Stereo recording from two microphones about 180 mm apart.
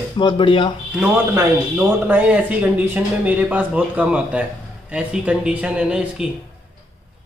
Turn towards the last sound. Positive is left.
turn(degrees=-5)  # may be behind; listen again after turning